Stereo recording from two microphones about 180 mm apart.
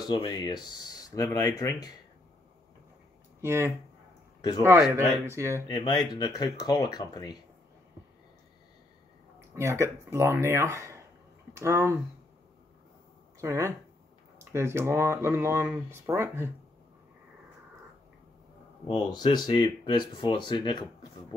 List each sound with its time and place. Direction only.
0.0 s speech: 25° left (ahead or behind)
3.3 s speech: 15° right (ahead or behind)
4.4 s speech: 20° left (ahead or behind)
5.2 s speech: 15° right (ahead or behind)
5.7 s speech: 25° left (ahead or behind)
9.6 s speech: 15° right (ahead or behind)
13.4 s speech: 15° right (ahead or behind)
18.9 s speech: 25° left (ahead or behind)